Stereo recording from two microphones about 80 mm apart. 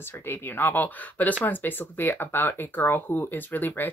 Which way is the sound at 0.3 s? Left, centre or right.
Left.